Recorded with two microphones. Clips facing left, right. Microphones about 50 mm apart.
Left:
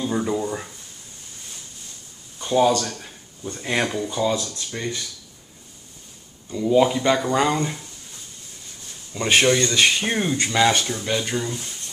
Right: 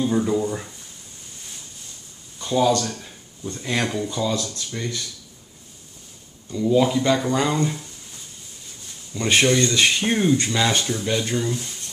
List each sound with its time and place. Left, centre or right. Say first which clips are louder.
0.0 s a sound: right 3 dB; centre
2.3 s a sound: left 2 dB; centre
3.4 s speech: left 1 dB; centre
6.5 s speech: left 1 dB; centre
9.1 s speech: left 1 dB; centre
10.7 s speech: even; centre